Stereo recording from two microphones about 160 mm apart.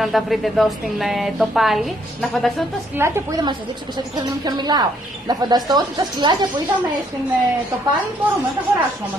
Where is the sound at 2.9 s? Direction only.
15° right (ahead or behind).